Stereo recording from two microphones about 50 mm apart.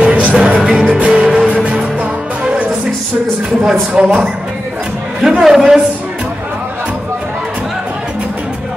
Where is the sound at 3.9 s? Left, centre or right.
Right.